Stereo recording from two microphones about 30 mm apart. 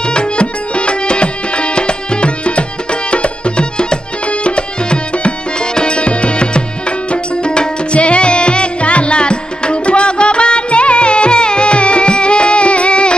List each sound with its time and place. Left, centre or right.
0.0 s tabla: left
4.3 s music: left